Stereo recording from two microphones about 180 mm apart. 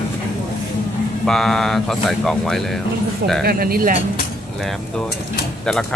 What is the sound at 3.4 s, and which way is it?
Speech, 55° right (ahead or behind).